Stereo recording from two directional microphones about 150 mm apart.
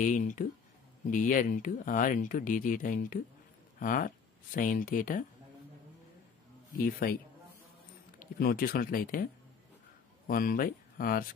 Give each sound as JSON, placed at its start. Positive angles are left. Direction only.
{"t": 0.0, "sound": "speech", "side_deg": 60}
{"t": 6.8, "sound": "speech", "side_deg": 75}
{"t": 8.2, "sound": "speech", "side_deg": 75}